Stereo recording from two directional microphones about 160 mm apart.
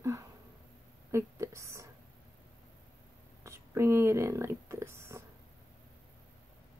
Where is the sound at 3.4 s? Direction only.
15° right (ahead or behind).